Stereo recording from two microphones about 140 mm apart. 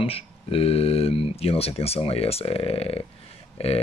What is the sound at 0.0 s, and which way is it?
Speech, 45° left (ahead or behind).